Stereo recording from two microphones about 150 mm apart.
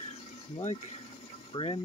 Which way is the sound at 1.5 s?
35° left (ahead or behind).